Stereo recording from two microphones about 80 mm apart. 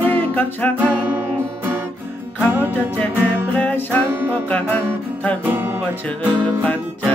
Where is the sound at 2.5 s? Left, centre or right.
Right.